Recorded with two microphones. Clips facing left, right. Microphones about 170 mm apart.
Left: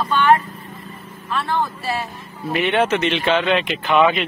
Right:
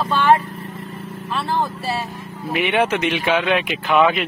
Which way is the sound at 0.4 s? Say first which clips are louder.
Right 4 dB; 90° right.